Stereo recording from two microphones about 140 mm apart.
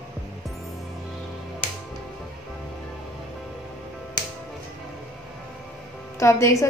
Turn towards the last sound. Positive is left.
turn(degrees=20)  # may be behind; listen again after turning